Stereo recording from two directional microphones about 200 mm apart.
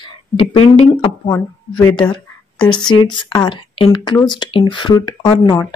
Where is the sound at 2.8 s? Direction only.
20° left (ahead or behind).